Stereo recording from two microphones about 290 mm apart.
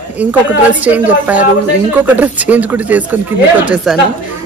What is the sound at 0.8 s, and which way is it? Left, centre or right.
A woman's voice, centre.